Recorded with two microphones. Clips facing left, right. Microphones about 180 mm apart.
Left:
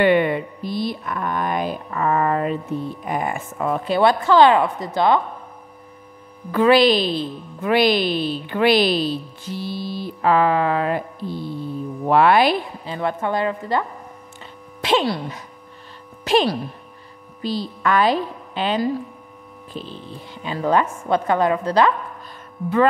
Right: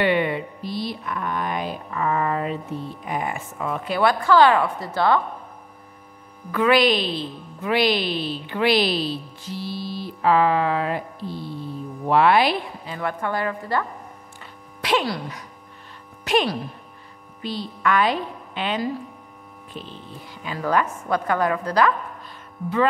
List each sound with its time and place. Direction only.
0.0 s a woman's voice: 50° left (ahead or behind)
3.8 s speech: 25° left (ahead or behind)
6.5 s a woman's voice: 30° left (ahead or behind); by 12.5 s 50° left (ahead or behind)
12.8 s a woman's voice: 25° left (ahead or behind)